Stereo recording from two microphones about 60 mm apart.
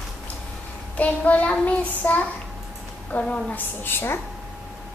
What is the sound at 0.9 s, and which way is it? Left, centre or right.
Child singing, left.